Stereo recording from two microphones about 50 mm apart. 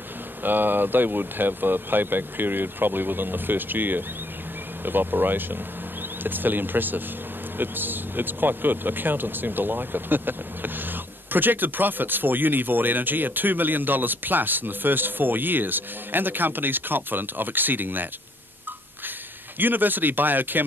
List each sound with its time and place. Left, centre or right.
0.4 s speech: right
19.6 s speech: right